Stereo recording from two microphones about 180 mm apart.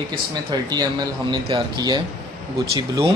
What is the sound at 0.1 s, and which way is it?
Speech, 25° right (ahead or behind).